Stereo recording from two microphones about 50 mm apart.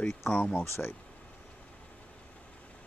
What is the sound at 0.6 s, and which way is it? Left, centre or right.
Speech, left.